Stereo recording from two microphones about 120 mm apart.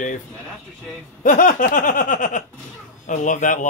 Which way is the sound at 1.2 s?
90° left.